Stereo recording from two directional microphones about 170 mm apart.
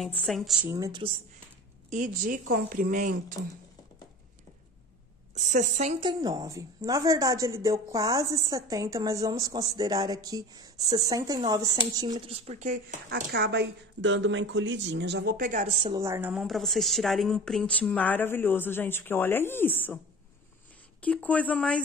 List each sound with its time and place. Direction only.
0.0 s speech: centre (ahead or behind)
0.7 s a woman's voice: 20° right (ahead or behind)
1.9 s speech: 50° right (ahead or behind)
5.3 s speech: 45° right (ahead or behind)
5.9 s a woman's voice: 25° right (ahead or behind)
12.3 s speech: 35° right (ahead or behind)
13.3 s speech: 75° right (ahead or behind); by 15.3 s 90° right
15.3 s speech: 50° right (ahead or behind)
15.6 s a woman's voice: 35° right (ahead or behind)
16.0 s a woman's voice: 15° right (ahead or behind)
16.4 s speech: centre (ahead or behind)
21.0 s speech: 10° left (ahead or behind)